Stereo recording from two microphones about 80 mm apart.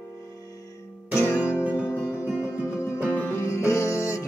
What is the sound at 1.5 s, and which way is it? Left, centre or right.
Music, centre.